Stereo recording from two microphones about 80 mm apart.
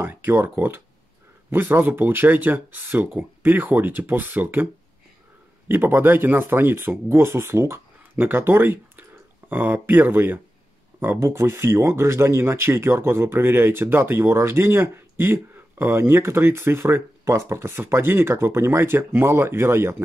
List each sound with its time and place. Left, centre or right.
0.0 s speech: right
5.7 s speech: right